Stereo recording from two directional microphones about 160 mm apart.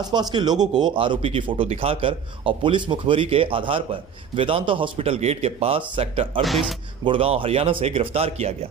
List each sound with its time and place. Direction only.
0.0 s speech: 25° right (ahead or behind)
6.4 s a man's voice: centre (ahead or behind)
7.1 s speech: 35° right (ahead or behind)